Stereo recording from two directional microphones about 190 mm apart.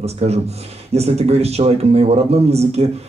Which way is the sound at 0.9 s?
35° right (ahead or behind).